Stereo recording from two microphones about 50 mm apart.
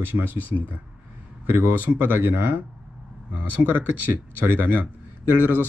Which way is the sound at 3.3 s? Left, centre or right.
Right.